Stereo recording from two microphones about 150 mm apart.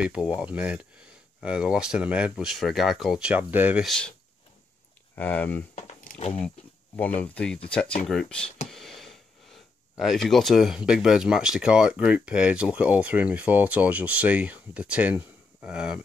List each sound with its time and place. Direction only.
0.0 s speech: 5° right (ahead or behind)
3.8 s speech: 5° left (ahead or behind)
5.1 s speech: 10° left (ahead or behind)
5.8 s a sound: 50° left (ahead or behind)
7.0 s speech: 10° left (ahead or behind)